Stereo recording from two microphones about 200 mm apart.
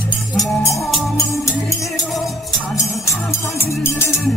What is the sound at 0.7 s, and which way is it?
Music, centre (ahead or behind).